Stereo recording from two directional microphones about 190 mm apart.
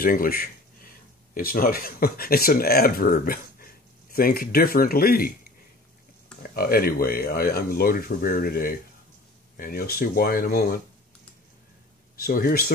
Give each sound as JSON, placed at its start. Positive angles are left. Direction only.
{"t": 0.0, "sound": "speech", "side_deg": 50}
{"t": 12.2, "sound": "speech", "side_deg": 50}